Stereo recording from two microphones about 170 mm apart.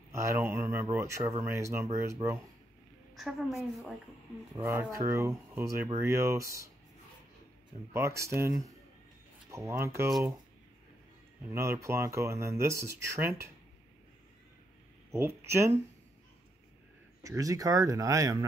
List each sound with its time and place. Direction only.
0.1 s speech: 15° right (ahead or behind)
3.2 s a woman's voice: centre (ahead or behind)
4.9 s speech: 15° right (ahead or behind)
7.9 s speech: 15° right (ahead or behind)
11.5 s speech: 15° right (ahead or behind)
15.1 s speech: 15° right (ahead or behind)
17.2 s speech: 20° right (ahead or behind)